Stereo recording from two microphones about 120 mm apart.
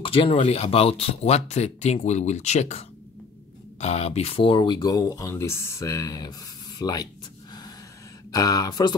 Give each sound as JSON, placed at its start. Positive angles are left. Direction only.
{"t": 0.0, "sound": "speech", "side_deg": 50}
{"t": 3.8, "sound": "speech", "side_deg": 60}
{"t": 4.7, "sound": "speech", "side_deg": 30}
{"t": 8.3, "sound": "speech", "side_deg": 30}